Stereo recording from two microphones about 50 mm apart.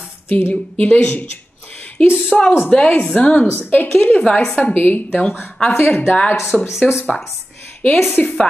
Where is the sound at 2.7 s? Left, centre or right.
Left.